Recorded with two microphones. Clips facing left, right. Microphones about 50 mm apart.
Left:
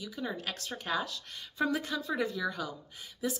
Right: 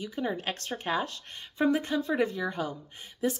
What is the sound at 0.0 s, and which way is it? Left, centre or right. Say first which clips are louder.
Speech: right 5 dB; right.